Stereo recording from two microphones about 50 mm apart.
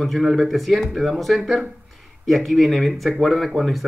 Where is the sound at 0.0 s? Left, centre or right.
Centre.